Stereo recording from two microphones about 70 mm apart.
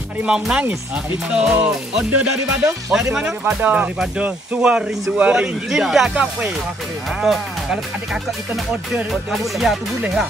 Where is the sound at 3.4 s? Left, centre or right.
Right.